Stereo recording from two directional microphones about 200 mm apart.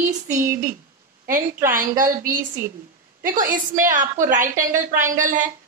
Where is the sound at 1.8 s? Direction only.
45° right (ahead or behind).